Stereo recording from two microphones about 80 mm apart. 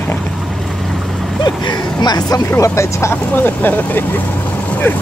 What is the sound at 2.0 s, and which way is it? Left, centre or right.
Speech, left.